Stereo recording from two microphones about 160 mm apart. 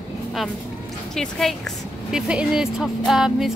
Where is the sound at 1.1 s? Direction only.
5° left (ahead or behind).